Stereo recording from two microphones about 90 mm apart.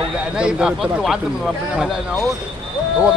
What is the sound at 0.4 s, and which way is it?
Speech, 10° right (ahead or behind).